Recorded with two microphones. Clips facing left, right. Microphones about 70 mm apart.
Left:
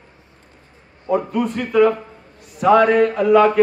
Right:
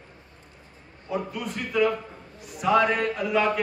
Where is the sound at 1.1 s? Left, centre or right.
Left.